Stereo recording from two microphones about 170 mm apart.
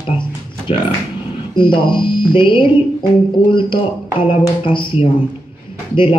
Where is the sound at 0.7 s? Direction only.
35° left (ahead or behind).